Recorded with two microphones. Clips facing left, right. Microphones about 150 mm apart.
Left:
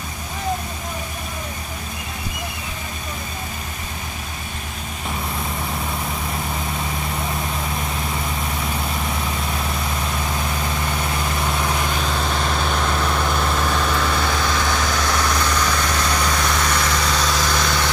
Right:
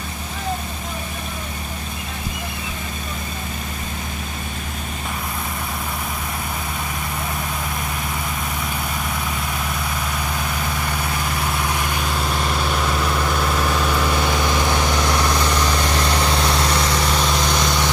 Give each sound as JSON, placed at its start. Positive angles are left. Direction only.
{"t": 13.0, "sound": "vehicle", "side_deg": -5}
{"t": 14.6, "sound": "vehicle", "side_deg": -20}